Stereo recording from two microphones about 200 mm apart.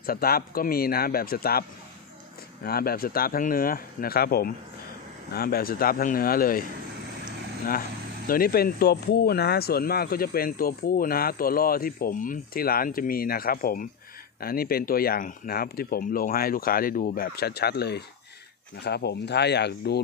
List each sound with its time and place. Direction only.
0.0 s speech: 50° left (ahead or behind)
8.3 s speech: 45° left (ahead or behind)